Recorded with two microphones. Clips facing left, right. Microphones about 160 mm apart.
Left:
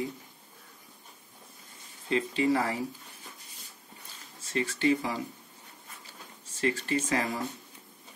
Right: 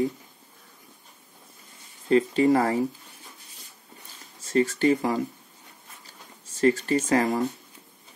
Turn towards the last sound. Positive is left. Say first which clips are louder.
# right 7 dB
turn(degrees=-40)  # may be behind; listen again after turning